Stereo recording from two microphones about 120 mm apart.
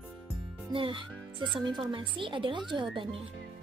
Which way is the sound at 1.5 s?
40° right (ahead or behind).